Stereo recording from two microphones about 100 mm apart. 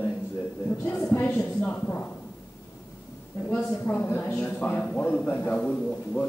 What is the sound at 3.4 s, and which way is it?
A man's voice, 15° left (ahead or behind).